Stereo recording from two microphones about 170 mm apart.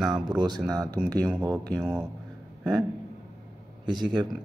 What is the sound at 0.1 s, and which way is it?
Speech, 25° right (ahead or behind).